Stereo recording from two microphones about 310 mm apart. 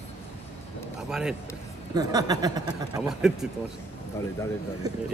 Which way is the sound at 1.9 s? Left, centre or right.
Centre.